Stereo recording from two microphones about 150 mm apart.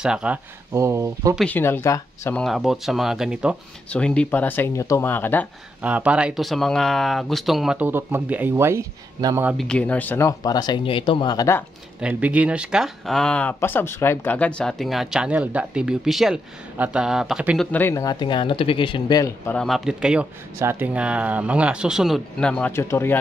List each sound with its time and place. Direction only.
0.0 s speech: 5° right (ahead or behind)
0.7 s speech: 20° right (ahead or behind)
1.4 s speech: 15° left (ahead or behind)
2.3 s speech: centre (ahead or behind)
3.9 s speech: 5° left (ahead or behind)
5.8 s speech: 10° right (ahead or behind)
9.6 s speech: 5° left (ahead or behind)
12.0 s speech: 10° right (ahead or behind)
17.6 s speech: 15° left (ahead or behind)
19.5 s speech: centre (ahead or behind)